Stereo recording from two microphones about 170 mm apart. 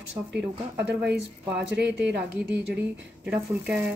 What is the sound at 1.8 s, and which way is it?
Speech, 70° right (ahead or behind).